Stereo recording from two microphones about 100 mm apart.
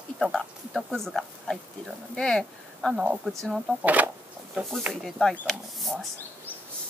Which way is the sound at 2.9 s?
10° right (ahead or behind).